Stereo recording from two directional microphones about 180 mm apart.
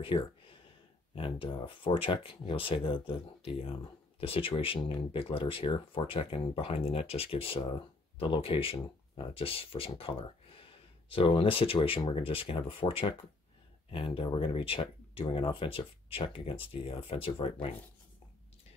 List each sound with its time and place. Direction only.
0.0 s speech: 30° left (ahead or behind)